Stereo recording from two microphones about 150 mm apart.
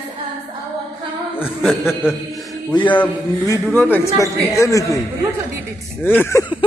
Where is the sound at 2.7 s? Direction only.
30° left (ahead or behind).